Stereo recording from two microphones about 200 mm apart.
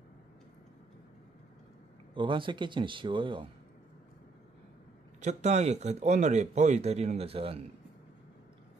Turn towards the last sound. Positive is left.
turn(degrees=-30)  # may be behind; listen again after turning